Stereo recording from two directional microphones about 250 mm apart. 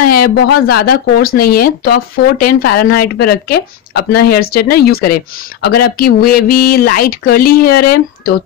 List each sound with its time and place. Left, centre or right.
0.1 s speech: left